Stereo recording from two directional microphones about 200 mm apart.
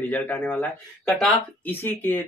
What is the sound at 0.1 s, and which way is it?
Speech, 10° left (ahead or behind).